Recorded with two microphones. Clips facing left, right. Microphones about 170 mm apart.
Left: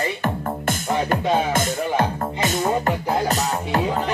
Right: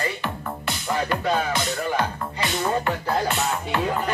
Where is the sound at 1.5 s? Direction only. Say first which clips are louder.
Left 3 dB; 45° left (ahead or behind).